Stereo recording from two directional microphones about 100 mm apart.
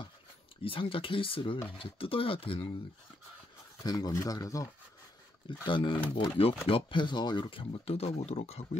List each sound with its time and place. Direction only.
0.7 s speech: 65° left (ahead or behind)
3.8 s speech: 40° left (ahead or behind)
5.7 s speech: 55° left (ahead or behind); by 8.6 s 90° left